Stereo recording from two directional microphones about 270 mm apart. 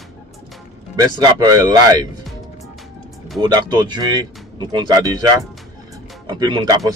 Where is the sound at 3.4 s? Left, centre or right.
Centre.